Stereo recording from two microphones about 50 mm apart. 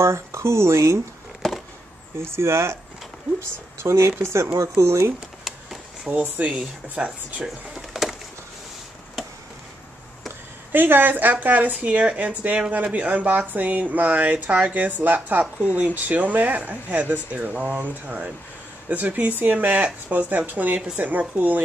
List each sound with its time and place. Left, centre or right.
0.0 s speech: right
2.1 s speech: right
3.8 s speech: right
6.1 s speech: right
7.4 s a sound: centre
10.7 s speech: right